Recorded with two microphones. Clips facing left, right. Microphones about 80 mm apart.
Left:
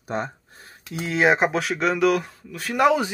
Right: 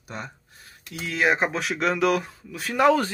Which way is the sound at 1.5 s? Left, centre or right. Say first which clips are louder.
Left 2 dB; centre.